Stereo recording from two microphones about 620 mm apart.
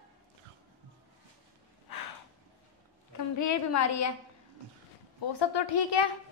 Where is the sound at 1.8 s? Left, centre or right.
Left.